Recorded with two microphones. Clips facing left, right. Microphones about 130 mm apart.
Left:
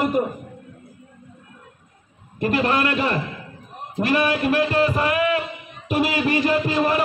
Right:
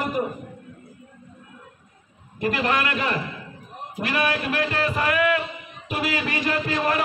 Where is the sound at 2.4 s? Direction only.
30° left (ahead or behind).